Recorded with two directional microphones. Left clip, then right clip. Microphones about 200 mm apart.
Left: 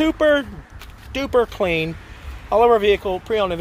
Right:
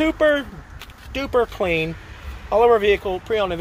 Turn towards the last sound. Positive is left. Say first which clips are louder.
# left 1 dB
turn(degrees=30)  # may be behind; listen again after turning